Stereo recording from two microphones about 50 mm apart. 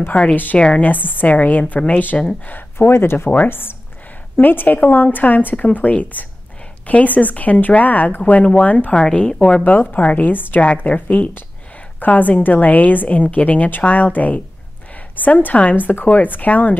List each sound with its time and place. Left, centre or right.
0.1 s a woman's voice: left
0.8 s a woman's voice: left
2.9 s speech: left
4.4 s a woman's voice: left
8.9 s a woman's voice: left
9.7 s a woman's voice: left
15.7 s a woman's voice: left